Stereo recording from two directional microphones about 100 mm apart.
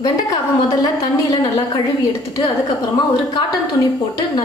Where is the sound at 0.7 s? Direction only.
40° left (ahead or behind).